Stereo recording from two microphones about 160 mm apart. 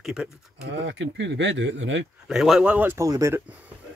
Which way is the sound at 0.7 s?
90° right.